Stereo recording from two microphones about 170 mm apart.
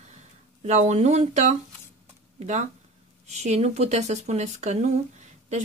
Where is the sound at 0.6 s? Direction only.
45° right (ahead or behind).